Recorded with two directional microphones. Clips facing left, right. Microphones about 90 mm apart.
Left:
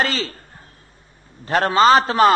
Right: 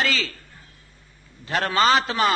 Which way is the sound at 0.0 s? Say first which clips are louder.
Left 3 dB; 35° left (ahead or behind).